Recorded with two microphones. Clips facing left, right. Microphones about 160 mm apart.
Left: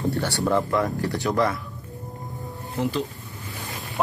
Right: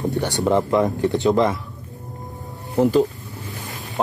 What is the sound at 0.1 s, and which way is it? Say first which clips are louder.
Speech: right 4 dB; 20° right (ahead or behind).